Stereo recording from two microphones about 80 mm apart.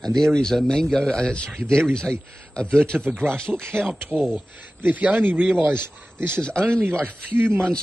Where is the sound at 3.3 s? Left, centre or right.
Centre.